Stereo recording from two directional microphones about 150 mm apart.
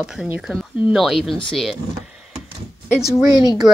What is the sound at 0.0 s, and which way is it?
Speech, 5° right (ahead or behind).